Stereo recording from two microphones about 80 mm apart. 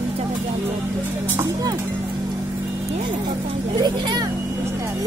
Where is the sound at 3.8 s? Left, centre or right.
Right.